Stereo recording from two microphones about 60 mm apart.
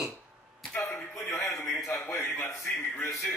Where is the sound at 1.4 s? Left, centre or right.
Left.